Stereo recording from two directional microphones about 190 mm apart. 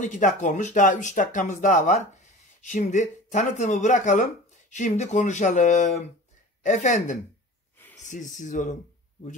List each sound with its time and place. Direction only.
0.0 s speech: 40° left (ahead or behind)